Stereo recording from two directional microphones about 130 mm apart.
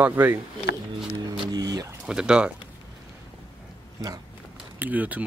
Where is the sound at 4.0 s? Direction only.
25° right (ahead or behind).